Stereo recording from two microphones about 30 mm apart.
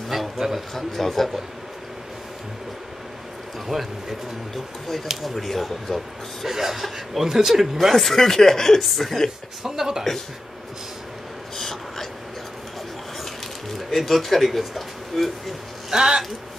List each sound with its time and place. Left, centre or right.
0.4 s a sound: centre
0.7 s speech: centre
3.6 s speech: centre
7.9 s speech: centre
8.8 s speech: centre
9.6 s speech: centre
11.5 s a sound: centre
13.7 s speech: centre
15.9 s speech: right